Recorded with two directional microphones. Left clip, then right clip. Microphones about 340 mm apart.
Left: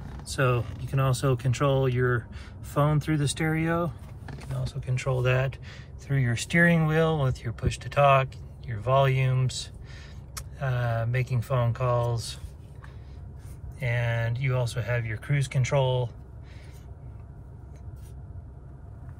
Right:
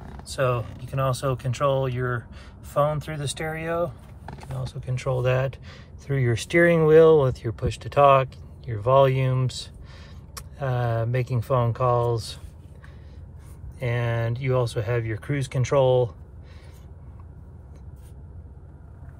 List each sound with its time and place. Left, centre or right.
0.3 s speech: centre
13.7 s speech: centre